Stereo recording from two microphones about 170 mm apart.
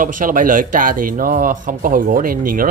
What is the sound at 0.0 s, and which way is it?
Speech, 50° right (ahead or behind).